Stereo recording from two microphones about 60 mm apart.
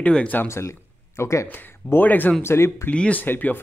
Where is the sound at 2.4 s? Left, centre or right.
Left.